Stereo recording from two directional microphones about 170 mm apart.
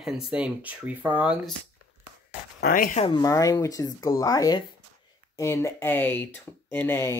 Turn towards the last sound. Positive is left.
turn(degrees=15)  # may be behind; listen again after turning